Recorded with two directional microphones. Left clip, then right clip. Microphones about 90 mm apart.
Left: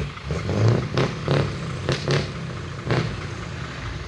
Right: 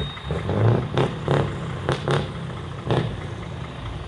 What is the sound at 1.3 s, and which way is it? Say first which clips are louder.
Vehicle: right 1 dB; 35° right (ahead or behind).